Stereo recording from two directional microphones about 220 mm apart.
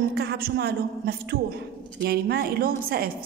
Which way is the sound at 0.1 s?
45° right (ahead or behind).